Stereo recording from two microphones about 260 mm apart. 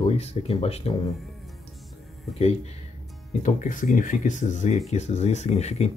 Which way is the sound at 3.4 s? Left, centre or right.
Left.